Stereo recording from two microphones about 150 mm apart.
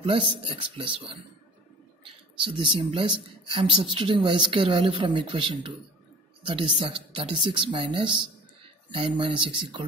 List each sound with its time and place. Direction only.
0.0 s speech: 35° right (ahead or behind)